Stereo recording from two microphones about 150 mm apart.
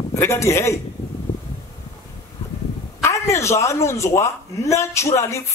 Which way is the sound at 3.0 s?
20° left (ahead or behind).